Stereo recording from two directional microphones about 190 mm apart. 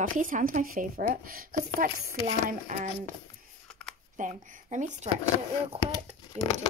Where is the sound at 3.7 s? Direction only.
5° left (ahead or behind).